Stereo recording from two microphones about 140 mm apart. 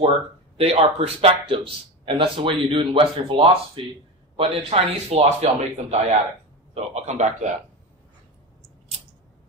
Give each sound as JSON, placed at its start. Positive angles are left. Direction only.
{"t": 0.6, "sound": "speech", "side_deg": -50}